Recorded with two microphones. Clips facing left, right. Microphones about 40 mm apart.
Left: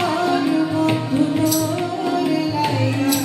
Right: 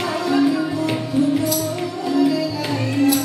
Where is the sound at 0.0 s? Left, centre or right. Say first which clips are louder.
Left 2 dB; left.